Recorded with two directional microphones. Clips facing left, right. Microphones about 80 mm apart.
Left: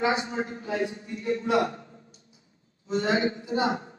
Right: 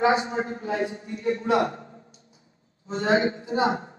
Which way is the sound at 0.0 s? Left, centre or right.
Right.